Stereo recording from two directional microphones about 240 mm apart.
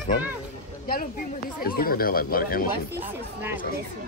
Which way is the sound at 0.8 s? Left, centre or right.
Left.